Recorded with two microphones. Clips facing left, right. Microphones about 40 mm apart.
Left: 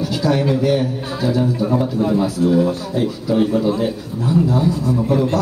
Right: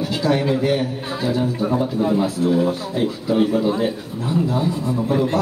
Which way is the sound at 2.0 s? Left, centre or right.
Centre.